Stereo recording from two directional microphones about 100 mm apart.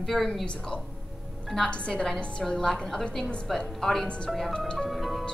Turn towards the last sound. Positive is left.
turn(degrees=0)  # may be behind; listen again after turning